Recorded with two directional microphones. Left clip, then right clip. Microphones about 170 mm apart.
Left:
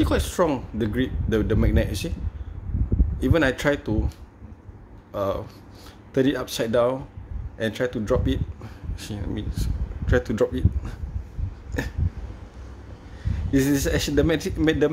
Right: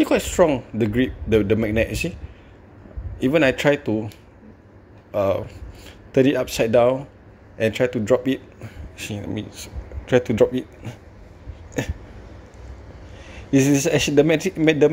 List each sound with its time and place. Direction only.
0.0 s speech: 10° right (ahead or behind)
3.2 s speech: 10° right (ahead or behind)
5.1 s speech: 10° right (ahead or behind)
13.5 s speech: 10° right (ahead or behind)